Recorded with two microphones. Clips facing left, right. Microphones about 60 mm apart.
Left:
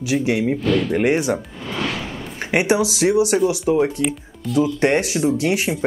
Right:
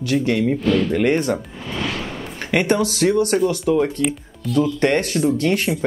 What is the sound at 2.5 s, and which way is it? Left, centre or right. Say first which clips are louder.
Speech: even; centre.